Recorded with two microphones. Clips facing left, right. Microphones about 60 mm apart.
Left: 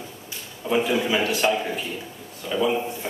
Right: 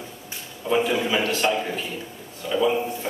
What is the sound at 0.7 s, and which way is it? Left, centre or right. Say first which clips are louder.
A man's voice: even; centre.